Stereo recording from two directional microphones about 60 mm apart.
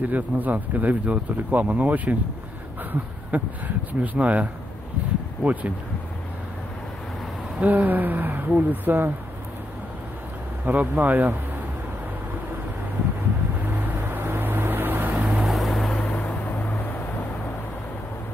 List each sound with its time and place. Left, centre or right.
0.0 s speech: right
7.6 s speech: right
10.6 s speech: right
14.0 s vehicle: right
15.2 s vehicle: centre
16.2 s vehicle: left